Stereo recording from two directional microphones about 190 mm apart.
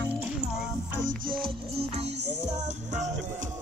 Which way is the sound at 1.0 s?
50° right (ahead or behind).